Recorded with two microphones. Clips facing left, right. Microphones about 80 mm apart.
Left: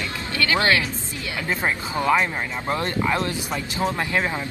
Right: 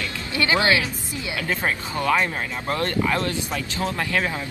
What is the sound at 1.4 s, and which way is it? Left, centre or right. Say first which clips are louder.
Speech: left 1 dB; centre.